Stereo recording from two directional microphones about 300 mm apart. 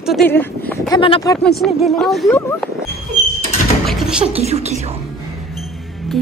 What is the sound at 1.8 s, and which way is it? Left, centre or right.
Speech, centre.